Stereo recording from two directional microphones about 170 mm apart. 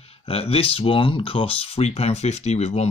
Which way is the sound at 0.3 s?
35° left (ahead or behind).